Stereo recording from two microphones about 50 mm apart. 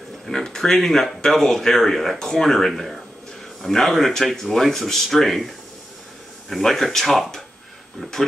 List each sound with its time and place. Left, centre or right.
0.3 s speech: centre
6.5 s speech: centre